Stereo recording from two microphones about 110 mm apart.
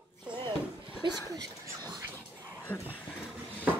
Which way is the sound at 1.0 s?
45° right (ahead or behind).